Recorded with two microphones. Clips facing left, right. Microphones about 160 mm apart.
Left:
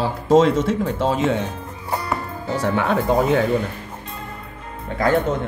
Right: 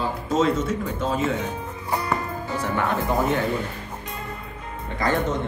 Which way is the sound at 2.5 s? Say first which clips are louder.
Left 5 dB; 80° left.